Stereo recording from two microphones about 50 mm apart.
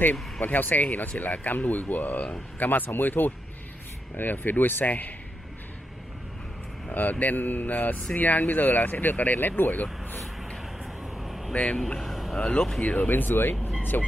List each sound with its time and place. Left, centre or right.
0.0 s speech: left
6.9 s speech: left
11.1 s a sound: centre
12.4 s speech: centre
12.8 s speech: left
13.1 s speech: left